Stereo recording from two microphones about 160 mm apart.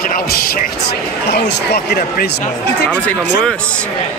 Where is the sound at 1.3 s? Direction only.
90° left.